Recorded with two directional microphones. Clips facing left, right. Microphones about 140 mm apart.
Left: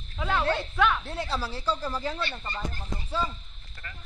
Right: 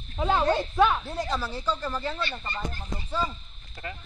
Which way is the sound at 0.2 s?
25° right (ahead or behind).